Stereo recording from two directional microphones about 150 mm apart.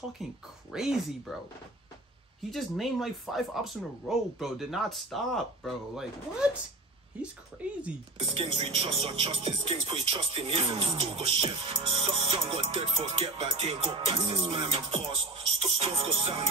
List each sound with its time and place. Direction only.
0.2 s speech: centre (ahead or behind)
2.5 s speech: centre (ahead or behind)
8.2 s speech: 40° right (ahead or behind)